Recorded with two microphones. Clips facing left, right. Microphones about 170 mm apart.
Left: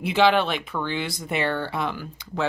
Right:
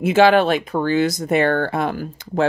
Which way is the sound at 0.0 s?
50° right (ahead or behind).